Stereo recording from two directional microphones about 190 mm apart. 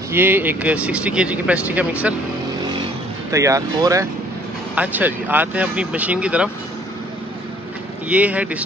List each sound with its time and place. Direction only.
0.1 s speech: 10° right (ahead or behind)
3.3 s speech: 15° right (ahead or behind)
8.1 s speech: 5° right (ahead or behind)